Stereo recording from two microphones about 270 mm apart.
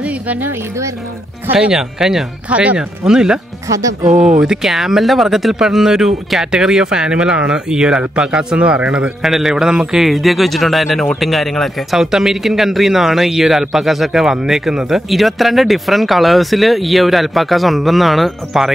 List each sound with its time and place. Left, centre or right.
1.5 s speech: centre
4.1 s speech: right
4.4 s speech: centre